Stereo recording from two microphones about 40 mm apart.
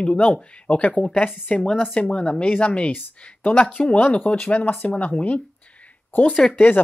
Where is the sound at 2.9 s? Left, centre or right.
Left.